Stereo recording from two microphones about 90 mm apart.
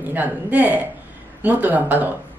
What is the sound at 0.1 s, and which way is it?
A woman's voice, 20° right (ahead or behind).